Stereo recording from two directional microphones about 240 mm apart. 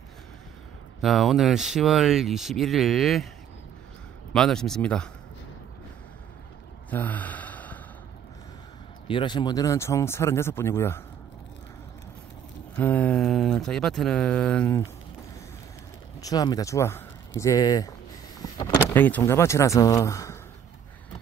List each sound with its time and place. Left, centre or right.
1.0 s speech: centre
4.3 s speech: centre
6.9 s gasp: centre
9.0 s speech: centre
12.7 s speech: centre
16.2 s speech: centre